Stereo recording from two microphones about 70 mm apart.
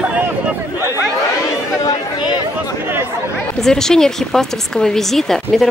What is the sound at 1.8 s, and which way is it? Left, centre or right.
Chatter, left.